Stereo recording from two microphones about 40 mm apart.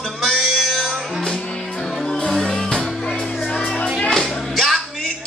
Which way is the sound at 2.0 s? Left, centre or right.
Centre.